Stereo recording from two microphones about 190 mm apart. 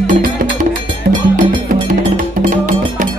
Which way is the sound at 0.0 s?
45° right (ahead or behind).